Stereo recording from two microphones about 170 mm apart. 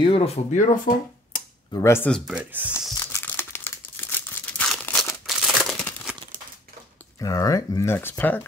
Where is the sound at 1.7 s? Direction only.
15° left (ahead or behind).